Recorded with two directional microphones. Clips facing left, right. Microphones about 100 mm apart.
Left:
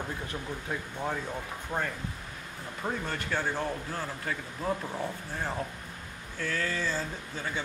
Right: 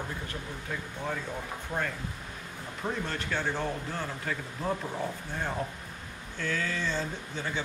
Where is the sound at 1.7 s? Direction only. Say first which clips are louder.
Even; 20° left (ahead or behind).